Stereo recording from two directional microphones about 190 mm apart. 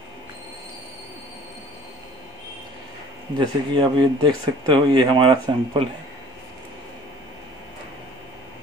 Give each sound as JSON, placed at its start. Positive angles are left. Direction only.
{"t": 3.3, "sound": "speech", "side_deg": -25}